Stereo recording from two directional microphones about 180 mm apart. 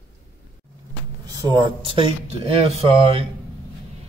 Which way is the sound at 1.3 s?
25° right (ahead or behind).